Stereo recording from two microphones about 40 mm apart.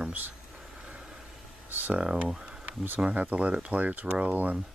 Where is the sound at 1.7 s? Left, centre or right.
Right.